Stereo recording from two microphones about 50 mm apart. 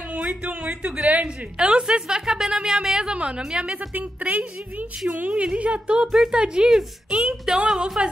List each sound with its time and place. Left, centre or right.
0.1 s speech: right
1.2 s a woman's voice: centre
3.9 s a woman's voice: right; by 8.0 s centre